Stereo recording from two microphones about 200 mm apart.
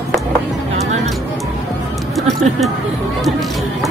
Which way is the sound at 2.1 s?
Centre (ahead or behind).